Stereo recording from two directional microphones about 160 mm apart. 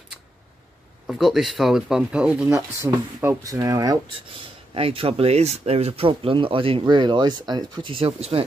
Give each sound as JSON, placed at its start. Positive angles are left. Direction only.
{"t": 1.0, "sound": "speech", "side_deg": 0}
{"t": 2.4, "sound": "speech", "side_deg": -20}
{"t": 4.3, "sound": "speech", "side_deg": -35}